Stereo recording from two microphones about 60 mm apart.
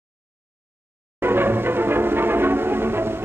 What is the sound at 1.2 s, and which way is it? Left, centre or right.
Music, right.